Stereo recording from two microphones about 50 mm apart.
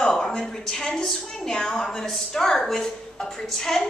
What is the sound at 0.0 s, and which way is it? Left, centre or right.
A man's voice, centre.